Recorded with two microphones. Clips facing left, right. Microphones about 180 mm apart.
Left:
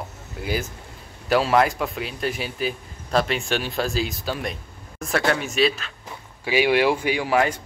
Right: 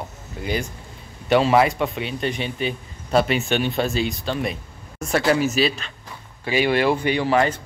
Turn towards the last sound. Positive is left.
turn(degrees=10)  # may be behind; listen again after turning